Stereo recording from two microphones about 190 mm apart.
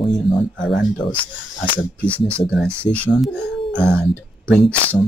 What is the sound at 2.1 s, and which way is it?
Speech, 25° left (ahead or behind).